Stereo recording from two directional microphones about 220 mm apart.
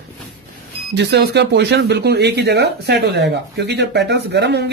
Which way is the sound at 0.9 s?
50° right (ahead or behind).